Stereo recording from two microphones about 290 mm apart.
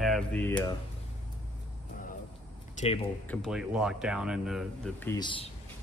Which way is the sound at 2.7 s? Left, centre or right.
Left.